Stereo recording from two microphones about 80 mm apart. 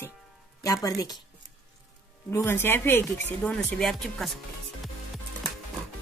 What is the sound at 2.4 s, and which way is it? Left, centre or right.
Speech, left.